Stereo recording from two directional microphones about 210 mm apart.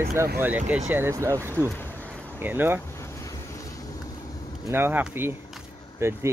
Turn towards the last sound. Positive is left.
turn(degrees=-10)  # may be behind; listen again after turning